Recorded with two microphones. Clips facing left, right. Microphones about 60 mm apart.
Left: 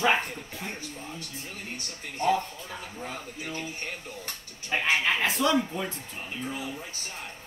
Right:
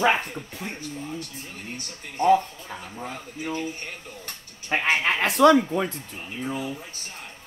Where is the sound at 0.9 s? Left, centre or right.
Centre.